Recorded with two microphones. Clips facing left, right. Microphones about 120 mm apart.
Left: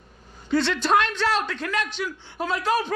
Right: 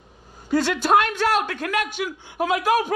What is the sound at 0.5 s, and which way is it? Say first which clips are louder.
Speech: right 2 dB; 10° right (ahead or behind).